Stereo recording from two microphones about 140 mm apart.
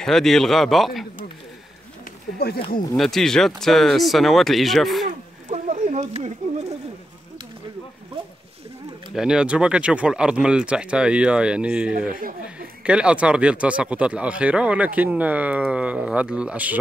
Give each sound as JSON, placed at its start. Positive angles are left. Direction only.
{"t": 0.0, "sound": "speech", "side_deg": 5}
{"t": 2.3, "sound": "speech", "side_deg": 90}
{"t": 3.0, "sound": "speech", "side_deg": 5}
{"t": 5.5, "sound": "a sound", "side_deg": -55}
{"t": 9.1, "sound": "speech", "side_deg": -5}